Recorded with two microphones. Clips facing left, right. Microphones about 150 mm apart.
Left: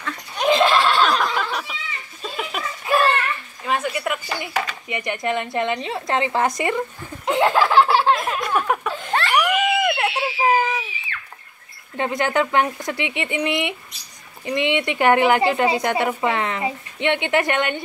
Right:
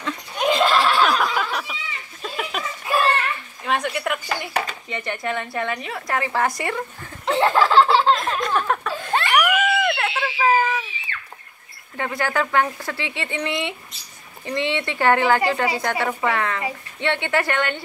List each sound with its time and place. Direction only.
0.4 s a sound: centre (ahead or behind)
3.6 s speech: centre (ahead or behind)
4.8 s a woman's voice: 15° left (ahead or behind)
7.2 s laughter: 15° left (ahead or behind)
9.3 s a sound: 15° left (ahead or behind)
12.0 s a woman's voice: 20° left (ahead or behind)